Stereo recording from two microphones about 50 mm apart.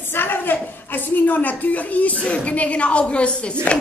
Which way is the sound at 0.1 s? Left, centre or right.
Left.